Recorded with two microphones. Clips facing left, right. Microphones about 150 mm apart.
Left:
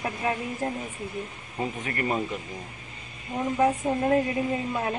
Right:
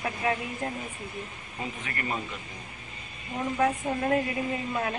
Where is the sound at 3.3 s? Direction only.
15° left (ahead or behind).